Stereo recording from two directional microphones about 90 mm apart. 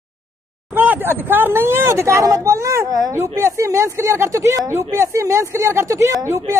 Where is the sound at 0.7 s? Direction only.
20° right (ahead or behind).